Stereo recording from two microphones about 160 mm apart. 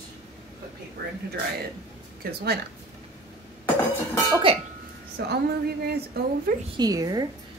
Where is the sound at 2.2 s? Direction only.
80° right.